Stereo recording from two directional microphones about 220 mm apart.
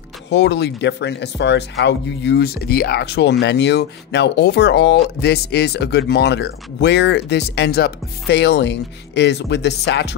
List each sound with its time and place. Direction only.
0.3 s speech: 50° left (ahead or behind)